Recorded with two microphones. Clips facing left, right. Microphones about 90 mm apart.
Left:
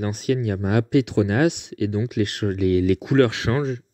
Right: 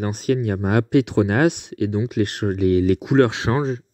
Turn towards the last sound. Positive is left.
turn(degrees=-30)  # may be behind; listen again after turning